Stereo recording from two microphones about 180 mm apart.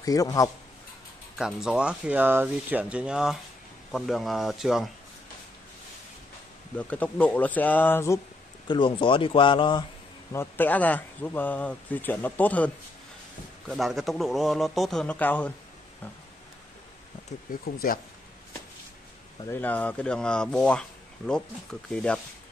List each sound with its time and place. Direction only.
0.0 s speech: 20° left (ahead or behind)
1.4 s speech: 5° right (ahead or behind)
6.8 s speech: 10° left (ahead or behind)
8.6 s speech: 30° left (ahead or behind)
10.3 s speech: 10° left (ahead or behind)
17.7 s speech: 55° left (ahead or behind)
19.5 s speech: 10° left (ahead or behind)